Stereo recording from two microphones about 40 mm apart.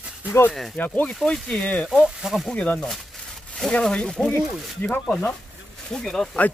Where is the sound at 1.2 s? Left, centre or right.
Left.